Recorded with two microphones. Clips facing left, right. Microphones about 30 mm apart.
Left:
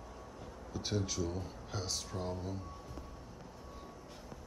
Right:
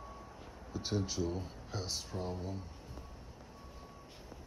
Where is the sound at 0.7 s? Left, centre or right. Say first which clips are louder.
Even; centre.